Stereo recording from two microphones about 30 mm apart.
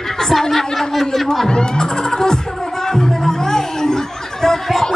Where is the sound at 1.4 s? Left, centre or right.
Left.